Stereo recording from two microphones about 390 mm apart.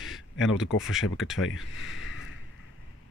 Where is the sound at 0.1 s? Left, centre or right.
Centre.